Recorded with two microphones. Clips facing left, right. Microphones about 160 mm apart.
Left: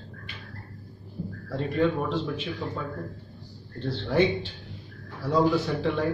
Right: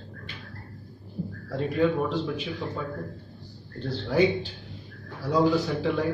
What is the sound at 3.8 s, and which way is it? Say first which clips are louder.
A man's voice: right 1 dB; centre (ahead or behind).